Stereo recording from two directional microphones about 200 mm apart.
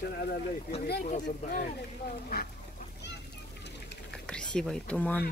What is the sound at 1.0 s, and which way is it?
Speech, 40° left (ahead or behind).